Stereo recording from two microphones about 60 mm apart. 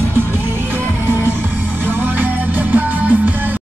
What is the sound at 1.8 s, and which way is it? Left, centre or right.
Music, right.